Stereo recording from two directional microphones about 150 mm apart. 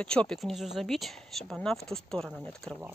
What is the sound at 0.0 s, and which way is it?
Speech, 5° left (ahead or behind).